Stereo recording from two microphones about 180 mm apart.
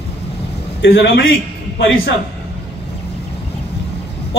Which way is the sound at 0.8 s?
75° left (ahead or behind).